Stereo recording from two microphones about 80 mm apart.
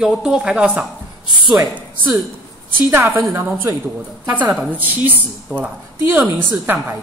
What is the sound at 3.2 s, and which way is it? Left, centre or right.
Speech, right.